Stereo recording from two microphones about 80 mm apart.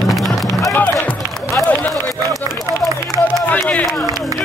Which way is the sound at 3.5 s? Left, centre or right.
Centre.